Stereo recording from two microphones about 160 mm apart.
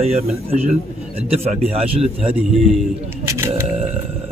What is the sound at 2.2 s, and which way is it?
Speech, 5° right (ahead or behind).